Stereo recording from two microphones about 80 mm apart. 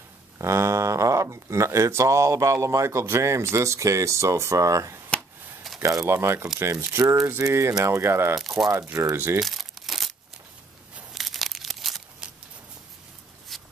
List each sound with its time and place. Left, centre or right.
0.4 s speech: right
8.4 s speech: centre
9.1 s speech: right
9.4 s crumpling: centre
11.1 s crumpling: centre
13.5 s a sound: centre